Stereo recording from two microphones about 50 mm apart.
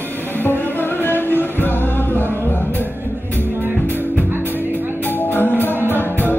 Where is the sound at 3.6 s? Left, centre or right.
Right.